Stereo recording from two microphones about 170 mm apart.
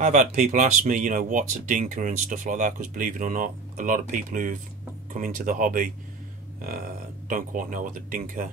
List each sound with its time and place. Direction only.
0.0 s speech: 45° right (ahead or behind)